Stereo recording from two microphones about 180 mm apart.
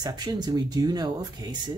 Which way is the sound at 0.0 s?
20° right (ahead or behind).